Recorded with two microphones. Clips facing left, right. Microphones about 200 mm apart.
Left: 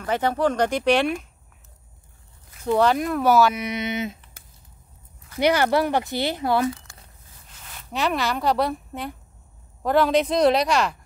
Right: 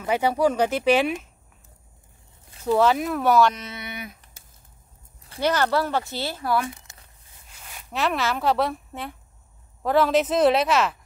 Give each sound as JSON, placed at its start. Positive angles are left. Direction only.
{"t": 0.0, "sound": "speech", "side_deg": -10}
{"t": 2.6, "sound": "speech", "side_deg": 0}
{"t": 5.4, "sound": "speech", "side_deg": 15}
{"t": 7.4, "sound": "speech", "side_deg": -10}